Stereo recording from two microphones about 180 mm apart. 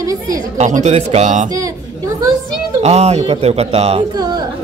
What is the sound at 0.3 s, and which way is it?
Speech, 45° right (ahead or behind).